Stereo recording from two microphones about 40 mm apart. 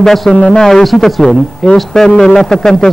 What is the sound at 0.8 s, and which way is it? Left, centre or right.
A man's voice, centre.